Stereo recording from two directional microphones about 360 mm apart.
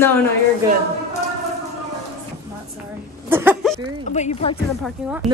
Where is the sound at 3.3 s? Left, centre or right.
Centre.